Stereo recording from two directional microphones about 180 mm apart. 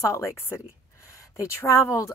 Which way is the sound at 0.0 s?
15° left (ahead or behind).